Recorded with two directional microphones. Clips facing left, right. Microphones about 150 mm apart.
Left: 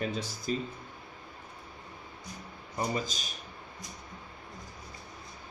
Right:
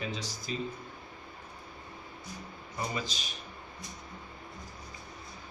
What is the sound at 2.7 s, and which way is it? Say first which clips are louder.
Speech: left 3 dB; 45° left (ahead or behind).